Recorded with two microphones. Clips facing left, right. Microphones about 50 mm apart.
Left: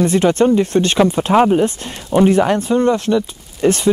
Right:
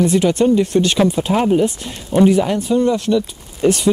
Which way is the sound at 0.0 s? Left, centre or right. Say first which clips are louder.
Left 1 dB; left.